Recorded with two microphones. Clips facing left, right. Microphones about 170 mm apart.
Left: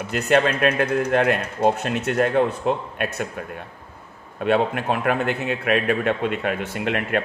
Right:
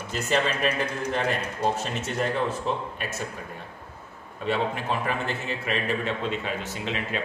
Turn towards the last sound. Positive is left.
turn(degrees=60)  # may be behind; listen again after turning